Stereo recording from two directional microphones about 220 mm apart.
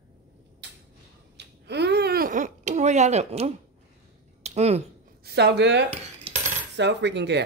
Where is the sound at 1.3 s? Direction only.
50° right (ahead or behind); by 4.8 s 30° right (ahead or behind).